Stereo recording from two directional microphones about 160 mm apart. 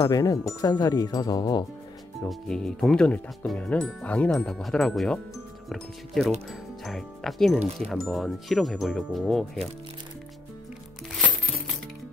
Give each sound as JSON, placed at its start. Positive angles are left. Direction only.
{"t": 0.0, "sound": "speech", "side_deg": 20}
{"t": 2.2, "sound": "speech", "side_deg": 5}